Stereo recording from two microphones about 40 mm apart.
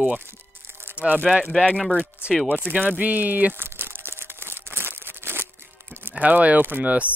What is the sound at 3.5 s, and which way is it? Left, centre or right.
Crumpling, right.